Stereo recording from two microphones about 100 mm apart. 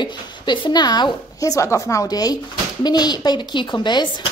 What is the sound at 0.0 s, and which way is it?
A woman's voice, 50° left (ahead or behind).